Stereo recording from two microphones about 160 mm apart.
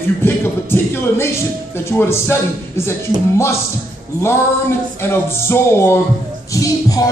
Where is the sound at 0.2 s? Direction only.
15° left (ahead or behind).